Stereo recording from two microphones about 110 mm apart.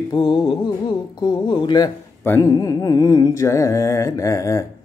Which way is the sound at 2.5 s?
30° left (ahead or behind).